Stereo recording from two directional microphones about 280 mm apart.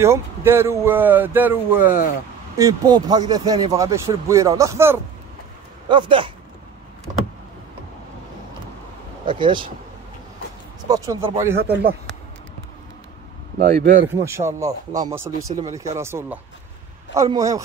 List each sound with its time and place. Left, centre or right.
0.0 s speech: centre
9.2 s speech: centre
10.9 s speech: centre
13.6 s speech: right
14.0 s speech: centre